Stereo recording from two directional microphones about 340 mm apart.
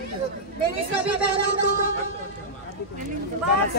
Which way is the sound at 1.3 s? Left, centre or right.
Right.